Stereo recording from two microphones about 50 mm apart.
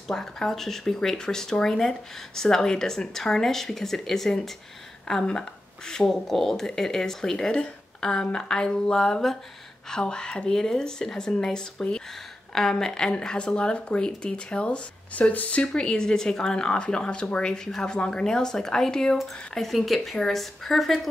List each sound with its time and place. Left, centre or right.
0.1 s speech: centre
12.7 s a woman's voice: centre